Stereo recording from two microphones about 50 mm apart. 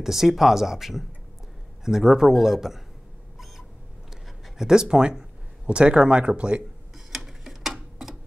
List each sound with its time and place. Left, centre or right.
0.0 s speech: centre
4.6 s speech: centre
7.1 s tick-tock: centre